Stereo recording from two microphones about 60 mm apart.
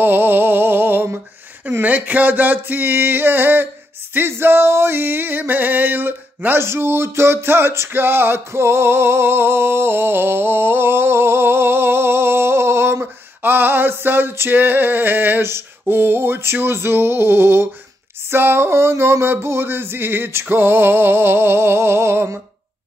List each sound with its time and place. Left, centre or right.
0.0 s music: right
6.6 s music: right
13.0 s music: right